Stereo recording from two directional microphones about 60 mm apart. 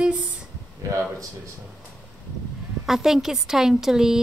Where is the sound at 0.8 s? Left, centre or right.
Right.